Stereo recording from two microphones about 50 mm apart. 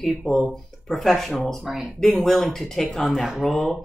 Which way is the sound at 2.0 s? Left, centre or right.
Centre.